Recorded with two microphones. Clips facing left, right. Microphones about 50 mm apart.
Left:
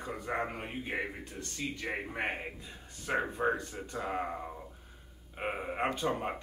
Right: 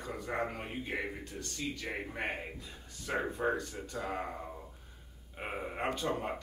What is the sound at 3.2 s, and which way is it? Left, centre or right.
Speech, centre.